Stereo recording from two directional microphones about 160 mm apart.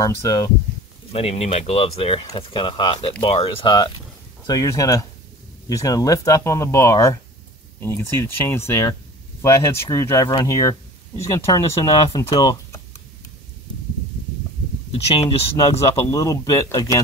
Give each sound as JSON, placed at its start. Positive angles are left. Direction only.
{"t": 0.0, "sound": "speech", "side_deg": 20}
{"t": 1.1, "sound": "speech", "side_deg": 40}
{"t": 15.1, "sound": "speech", "side_deg": 35}
{"t": 16.1, "sound": "speech", "side_deg": 20}